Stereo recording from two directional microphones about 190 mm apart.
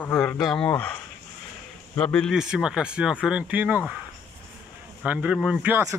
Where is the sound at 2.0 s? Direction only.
5° left (ahead or behind).